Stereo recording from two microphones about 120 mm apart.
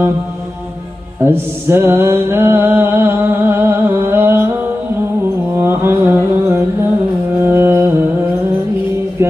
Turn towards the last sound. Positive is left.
turn(degrees=-20)  # may be behind; listen again after turning